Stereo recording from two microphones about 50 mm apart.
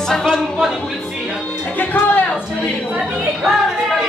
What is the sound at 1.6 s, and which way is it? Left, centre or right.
Music, left.